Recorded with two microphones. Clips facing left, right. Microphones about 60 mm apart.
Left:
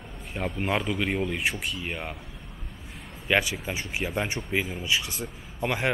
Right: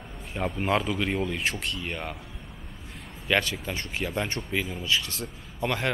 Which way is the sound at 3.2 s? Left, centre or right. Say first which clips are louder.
Left 1 dB; centre.